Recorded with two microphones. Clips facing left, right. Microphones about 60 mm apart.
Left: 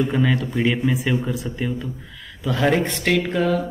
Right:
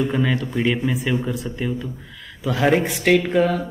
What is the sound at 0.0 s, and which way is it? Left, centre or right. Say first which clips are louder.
Speech: left 1 dB; centre.